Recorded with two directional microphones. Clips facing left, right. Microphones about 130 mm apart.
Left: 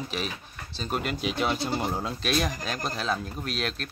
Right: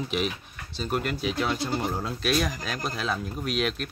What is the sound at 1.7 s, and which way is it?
Speech, 5° left (ahead or behind).